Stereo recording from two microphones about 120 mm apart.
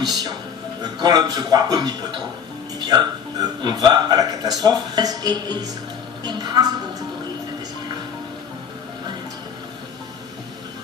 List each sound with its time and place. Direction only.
0.0 s speech: 35° right (ahead or behind)